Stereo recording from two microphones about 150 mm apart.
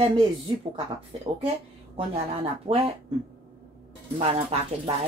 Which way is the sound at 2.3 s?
40° right (ahead or behind).